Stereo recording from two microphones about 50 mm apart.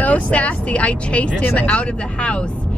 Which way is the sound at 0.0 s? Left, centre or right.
Left.